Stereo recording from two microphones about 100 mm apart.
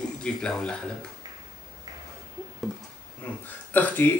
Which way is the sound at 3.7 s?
15° left (ahead or behind).